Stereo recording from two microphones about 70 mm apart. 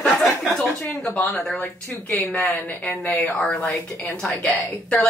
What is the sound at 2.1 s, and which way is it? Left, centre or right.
Speech, centre.